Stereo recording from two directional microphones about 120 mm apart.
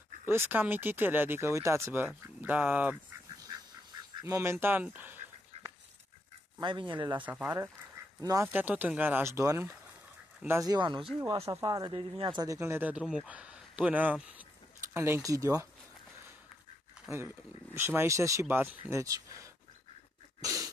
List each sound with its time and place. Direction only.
0.2 s speech: 20° right (ahead or behind)
3.3 s a sound: 30° right (ahead or behind)
4.2 s speech: 25° right (ahead or behind)
6.6 s speech: 40° right (ahead or behind)
7.4 s speech: 25° right (ahead or behind)
8.5 s speech: 15° right (ahead or behind)
10.6 s speech: 35° right (ahead or behind)
11.1 s speech: 25° right (ahead or behind); by 12.4 s 45° right (ahead or behind)
12.4 s speech: 20° right (ahead or behind)
13.0 s speech: 5° right (ahead or behind)
15.0 s speech: 20° right (ahead or behind)
17.7 s speech: 20° right (ahead or behind)
20.4 s sneeze: 30° right (ahead or behind)